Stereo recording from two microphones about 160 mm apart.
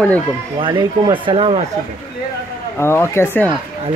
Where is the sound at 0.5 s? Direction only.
30° right (ahead or behind).